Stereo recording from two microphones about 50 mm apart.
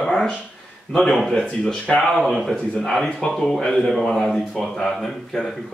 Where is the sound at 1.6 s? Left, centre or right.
Left.